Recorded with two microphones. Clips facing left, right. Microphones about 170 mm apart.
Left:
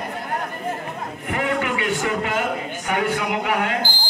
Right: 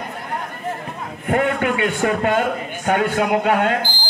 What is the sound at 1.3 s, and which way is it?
A man's voice, 50° right (ahead or behind).